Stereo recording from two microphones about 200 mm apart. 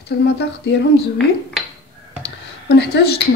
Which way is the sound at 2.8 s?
55° left (ahead or behind).